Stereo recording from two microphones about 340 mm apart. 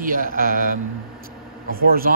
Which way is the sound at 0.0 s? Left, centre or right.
Right.